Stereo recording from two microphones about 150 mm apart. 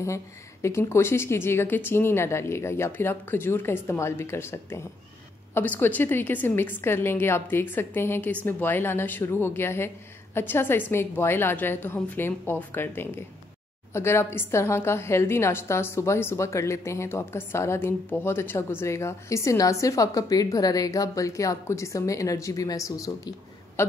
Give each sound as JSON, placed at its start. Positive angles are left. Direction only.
{"t": 0.0, "sound": "a woman's voice", "side_deg": 20}